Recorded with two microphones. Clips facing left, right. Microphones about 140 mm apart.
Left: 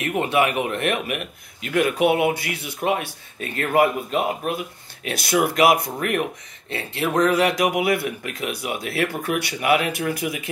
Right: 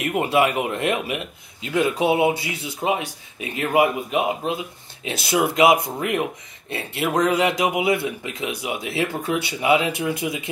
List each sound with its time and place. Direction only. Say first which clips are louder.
0.0 s speech: right 1 dB; 25° right (ahead or behind)